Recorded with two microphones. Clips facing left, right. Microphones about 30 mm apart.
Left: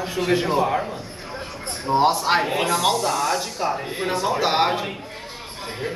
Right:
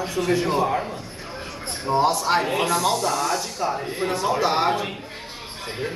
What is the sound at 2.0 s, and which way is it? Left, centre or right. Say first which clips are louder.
Speech: left 2 dB; left.